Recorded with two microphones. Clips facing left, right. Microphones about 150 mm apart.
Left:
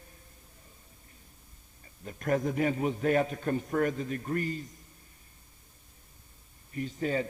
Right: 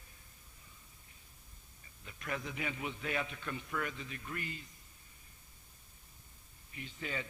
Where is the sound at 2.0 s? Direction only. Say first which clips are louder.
Left 12 dB; 45° left (ahead or behind).